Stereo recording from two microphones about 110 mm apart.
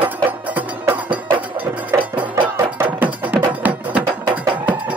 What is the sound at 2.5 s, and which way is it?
Music, 20° right (ahead or behind).